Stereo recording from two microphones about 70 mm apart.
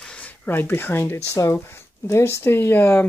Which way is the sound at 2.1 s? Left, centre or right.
Left.